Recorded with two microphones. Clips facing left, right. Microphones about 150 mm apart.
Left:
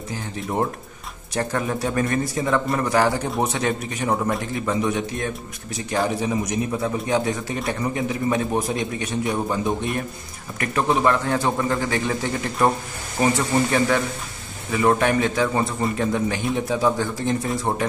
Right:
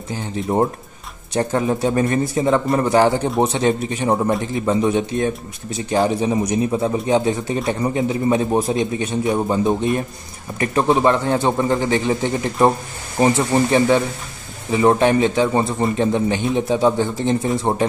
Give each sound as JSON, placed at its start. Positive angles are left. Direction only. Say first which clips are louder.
{"t": 0.1, "sound": "a man's voice", "louder": "right 6 dB", "side_deg": -30}